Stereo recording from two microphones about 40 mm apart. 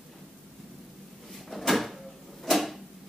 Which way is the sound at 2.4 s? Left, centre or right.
Centre.